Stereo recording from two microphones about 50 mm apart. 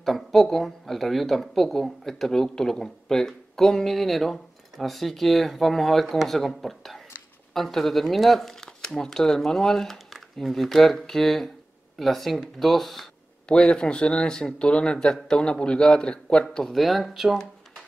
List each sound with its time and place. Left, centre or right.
0.0 s speech: centre
13.5 s speech: centre
16.7 s speech: centre